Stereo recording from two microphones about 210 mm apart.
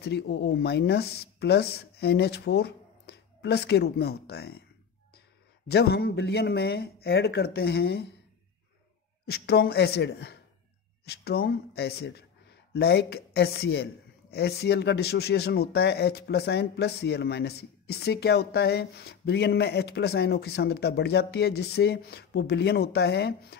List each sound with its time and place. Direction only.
0.0 s speech: 55° left (ahead or behind)
5.7 s speech: 50° left (ahead or behind)
9.2 s a man's voice: 50° left (ahead or behind)